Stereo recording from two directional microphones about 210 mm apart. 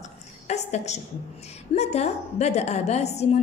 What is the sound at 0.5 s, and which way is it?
A woman's voice, 30° left (ahead or behind).